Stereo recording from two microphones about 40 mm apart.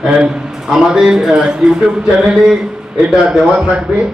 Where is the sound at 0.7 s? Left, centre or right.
Centre.